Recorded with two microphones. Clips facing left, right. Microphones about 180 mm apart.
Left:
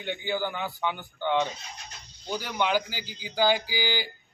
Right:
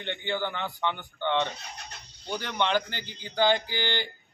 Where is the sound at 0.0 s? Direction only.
10° left (ahead or behind).